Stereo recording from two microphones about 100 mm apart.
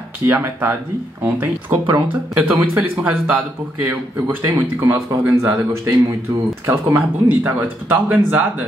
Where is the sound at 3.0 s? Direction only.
15° right (ahead or behind).